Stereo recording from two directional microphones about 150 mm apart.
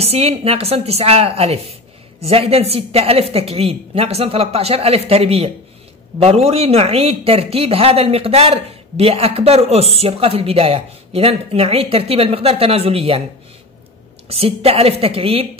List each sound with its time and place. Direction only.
0.0 s a woman's voice: 40° right (ahead or behind)
14.3 s speech: 40° right (ahead or behind)